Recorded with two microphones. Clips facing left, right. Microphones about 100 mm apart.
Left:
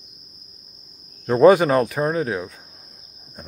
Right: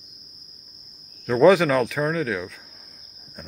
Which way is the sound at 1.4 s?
45° left (ahead or behind).